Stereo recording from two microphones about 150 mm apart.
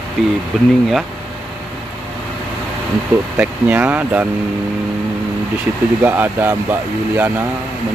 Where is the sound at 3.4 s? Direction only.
10° right (ahead or behind).